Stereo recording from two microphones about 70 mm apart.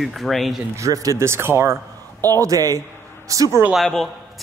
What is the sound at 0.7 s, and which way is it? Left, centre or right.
Speech, right.